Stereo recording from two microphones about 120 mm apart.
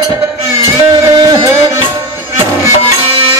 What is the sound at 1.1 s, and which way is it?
Music, 30° right (ahead or behind).